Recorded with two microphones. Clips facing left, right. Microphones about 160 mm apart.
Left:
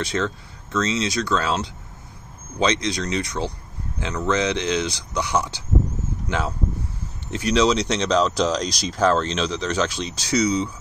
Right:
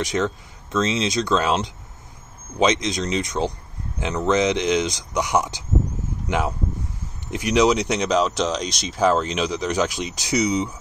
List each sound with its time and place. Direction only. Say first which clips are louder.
0.0 s speech: right 2 dB; 15° right (ahead or behind)